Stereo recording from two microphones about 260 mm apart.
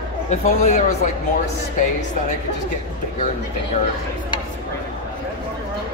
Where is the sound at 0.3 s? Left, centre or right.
Left.